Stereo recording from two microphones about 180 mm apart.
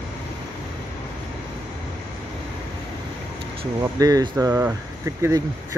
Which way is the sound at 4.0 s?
20° right (ahead or behind).